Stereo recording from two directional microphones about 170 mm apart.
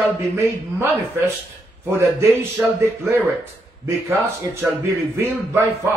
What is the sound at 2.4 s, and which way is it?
A man's voice, 15° right (ahead or behind).